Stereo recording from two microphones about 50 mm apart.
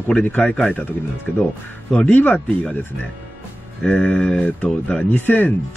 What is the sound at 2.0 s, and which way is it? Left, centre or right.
Speech, left.